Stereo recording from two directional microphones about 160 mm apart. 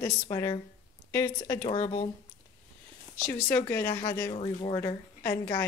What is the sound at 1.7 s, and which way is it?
Speech, 30° left (ahead or behind).